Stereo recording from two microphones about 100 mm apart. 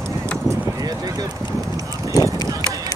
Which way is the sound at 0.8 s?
40° right (ahead or behind).